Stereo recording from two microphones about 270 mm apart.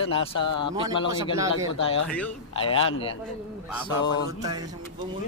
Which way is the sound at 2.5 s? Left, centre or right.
Centre.